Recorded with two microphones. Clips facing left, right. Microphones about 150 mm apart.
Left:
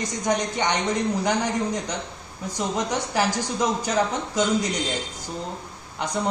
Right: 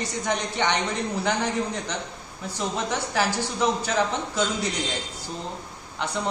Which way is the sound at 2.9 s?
15° left (ahead or behind).